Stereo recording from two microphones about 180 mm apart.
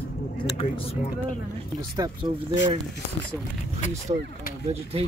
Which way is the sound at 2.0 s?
25° right (ahead or behind).